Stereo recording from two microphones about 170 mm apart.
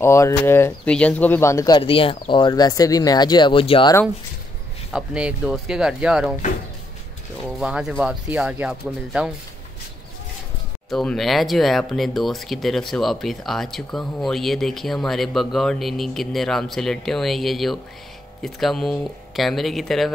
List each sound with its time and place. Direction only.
0.0 s speech: 15° left (ahead or behind)
1.8 s speech: 30° left (ahead or behind)
4.9 s speech: 5° right (ahead or behind)
7.4 s speech: 5° right (ahead or behind)
10.9 s speech: centre (ahead or behind)